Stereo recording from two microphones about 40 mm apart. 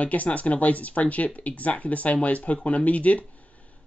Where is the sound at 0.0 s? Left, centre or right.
Left.